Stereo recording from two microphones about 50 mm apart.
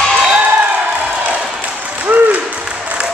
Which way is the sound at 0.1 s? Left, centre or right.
Right.